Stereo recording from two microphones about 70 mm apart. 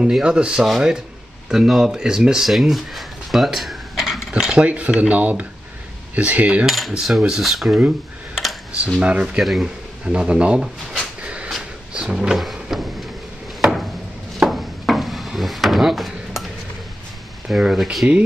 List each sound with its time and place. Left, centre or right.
0.0 s speech: centre
4.3 s speech: centre
6.1 s coin: right
6.9 s dishes: centre
8.7 s speech: centre
9.4 s dishes: centre
10.0 s a sound: centre
12.4 s a sound: centre
17.5 s speech: centre